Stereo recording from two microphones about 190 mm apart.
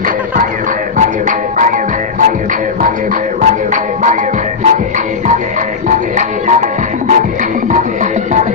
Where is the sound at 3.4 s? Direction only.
40° right (ahead or behind).